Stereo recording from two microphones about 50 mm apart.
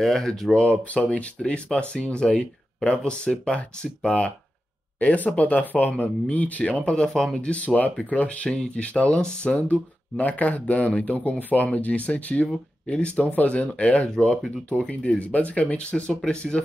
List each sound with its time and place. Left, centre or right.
0.0 s speech: centre
0.6 s speech: left
15.1 s speech: left